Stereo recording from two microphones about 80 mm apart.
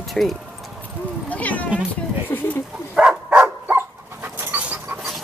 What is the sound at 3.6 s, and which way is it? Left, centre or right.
Dog, right.